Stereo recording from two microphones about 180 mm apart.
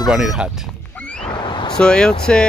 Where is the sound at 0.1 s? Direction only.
Centre (ahead or behind).